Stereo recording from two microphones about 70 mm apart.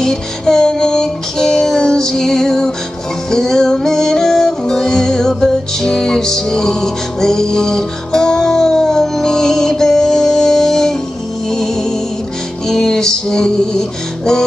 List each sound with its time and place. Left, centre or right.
0.0 s music: centre